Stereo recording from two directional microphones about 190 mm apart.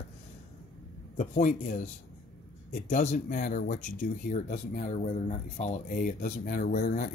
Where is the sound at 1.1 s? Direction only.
45° left (ahead or behind).